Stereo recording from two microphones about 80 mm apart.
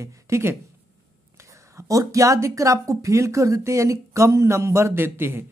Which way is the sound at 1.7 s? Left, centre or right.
Right.